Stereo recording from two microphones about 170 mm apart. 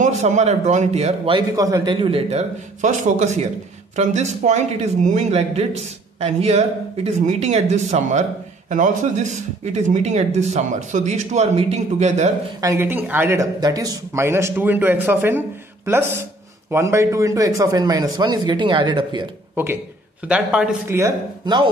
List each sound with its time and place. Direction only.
0.0 s a man's voice: 45° right (ahead or behind)
1.5 s a man's voice: 20° right (ahead or behind); by 12.3 s 40° right (ahead or behind)
12.6 s a man's voice: 15° right (ahead or behind)
19.5 s speech: 15° right (ahead or behind)
21.0 s a man's voice: 25° right (ahead or behind)